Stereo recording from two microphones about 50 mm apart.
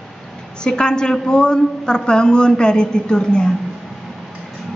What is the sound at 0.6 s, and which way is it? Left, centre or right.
Speech, centre.